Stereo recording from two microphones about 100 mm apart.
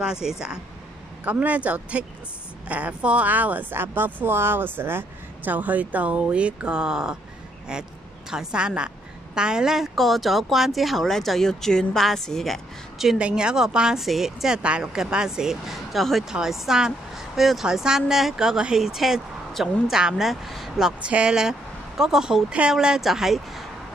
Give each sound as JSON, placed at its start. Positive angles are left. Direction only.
{"t": 0.0, "sound": "a woman's voice", "side_deg": -5}